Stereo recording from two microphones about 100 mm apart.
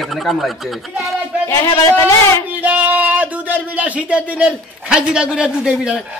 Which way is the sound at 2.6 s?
15° right (ahead or behind).